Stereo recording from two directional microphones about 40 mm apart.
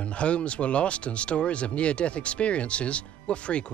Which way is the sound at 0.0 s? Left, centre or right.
Left.